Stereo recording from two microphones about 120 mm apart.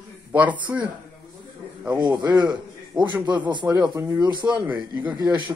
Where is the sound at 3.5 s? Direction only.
35° right (ahead or behind).